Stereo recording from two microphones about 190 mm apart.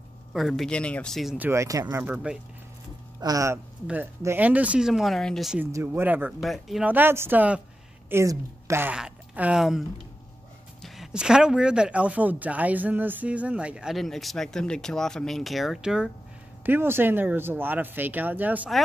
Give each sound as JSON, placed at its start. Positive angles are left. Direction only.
{"t": 0.3, "sound": "speech", "side_deg": 0}
{"t": 1.4, "sound": "speech", "side_deg": -15}
{"t": 3.2, "sound": "speech", "side_deg": -20}
{"t": 5.7, "sound": "speech", "side_deg": -15}